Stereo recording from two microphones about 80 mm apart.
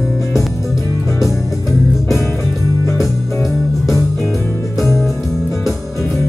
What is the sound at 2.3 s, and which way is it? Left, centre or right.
Music, centre.